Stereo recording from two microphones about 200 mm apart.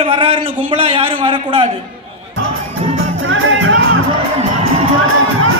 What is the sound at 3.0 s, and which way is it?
Music, 85° right.